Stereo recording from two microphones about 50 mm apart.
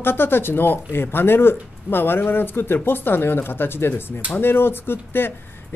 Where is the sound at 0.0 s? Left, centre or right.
Left.